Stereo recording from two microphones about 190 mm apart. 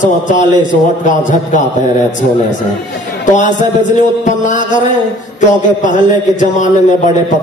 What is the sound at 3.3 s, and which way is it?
Speech, 40° left (ahead or behind).